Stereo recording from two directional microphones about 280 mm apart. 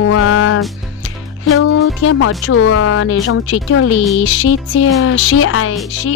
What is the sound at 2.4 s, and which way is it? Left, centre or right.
Speech, left.